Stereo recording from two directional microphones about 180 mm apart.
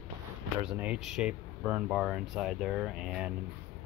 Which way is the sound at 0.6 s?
10° right (ahead or behind).